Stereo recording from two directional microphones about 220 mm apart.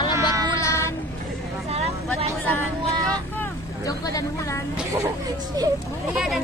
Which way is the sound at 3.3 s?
10° left (ahead or behind).